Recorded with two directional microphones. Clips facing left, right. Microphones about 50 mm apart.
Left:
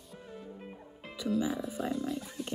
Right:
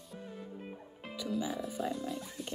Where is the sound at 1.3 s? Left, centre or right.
Centre.